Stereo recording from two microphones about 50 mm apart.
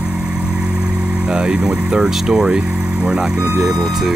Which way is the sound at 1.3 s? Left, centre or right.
Centre.